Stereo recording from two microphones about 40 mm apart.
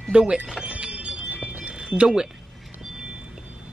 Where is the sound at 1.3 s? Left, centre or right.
Right.